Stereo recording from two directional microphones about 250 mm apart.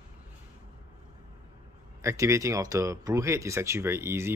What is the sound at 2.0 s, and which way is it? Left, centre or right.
Speech, centre.